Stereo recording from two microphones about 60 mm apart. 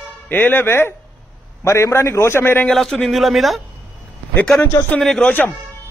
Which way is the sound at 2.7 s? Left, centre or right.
Centre.